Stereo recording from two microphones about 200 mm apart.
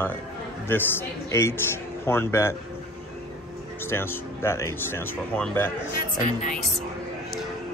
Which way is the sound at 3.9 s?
10° left (ahead or behind).